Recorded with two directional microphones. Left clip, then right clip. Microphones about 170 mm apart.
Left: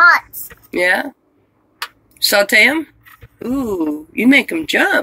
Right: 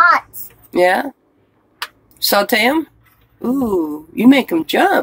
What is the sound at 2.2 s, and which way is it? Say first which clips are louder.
Speech: left 3 dB; 30° right (ahead or behind).